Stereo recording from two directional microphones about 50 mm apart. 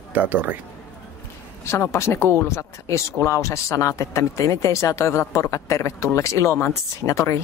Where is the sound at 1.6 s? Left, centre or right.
Left.